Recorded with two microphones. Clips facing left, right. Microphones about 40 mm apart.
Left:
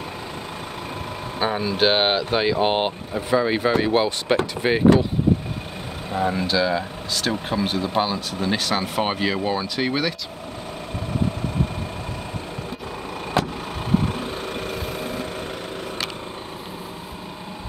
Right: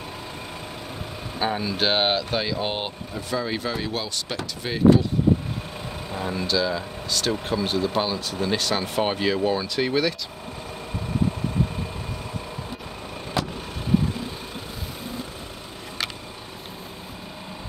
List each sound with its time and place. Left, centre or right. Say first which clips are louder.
1.4 s speech: left 4 dB; centre; by 4.8 s left
6.1 s speech: left 7 dB; left
6.4 s speech: left 3 dB; centre
13.4 s vehicle: left 4 dB; left